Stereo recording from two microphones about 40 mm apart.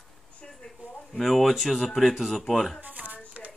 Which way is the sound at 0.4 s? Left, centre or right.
Left.